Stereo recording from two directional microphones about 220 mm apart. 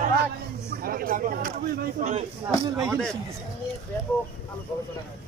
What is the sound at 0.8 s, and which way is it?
Speech, 40° right (ahead or behind).